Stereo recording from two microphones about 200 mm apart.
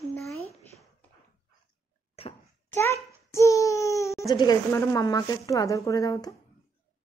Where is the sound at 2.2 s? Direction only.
30° left (ahead or behind).